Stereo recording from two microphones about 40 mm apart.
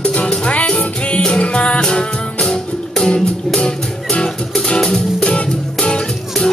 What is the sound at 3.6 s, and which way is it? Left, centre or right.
Music, left.